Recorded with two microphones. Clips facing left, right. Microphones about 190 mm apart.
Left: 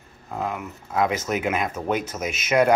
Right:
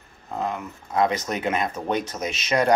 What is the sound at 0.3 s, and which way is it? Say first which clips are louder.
Speech: even; 5° left (ahead or behind).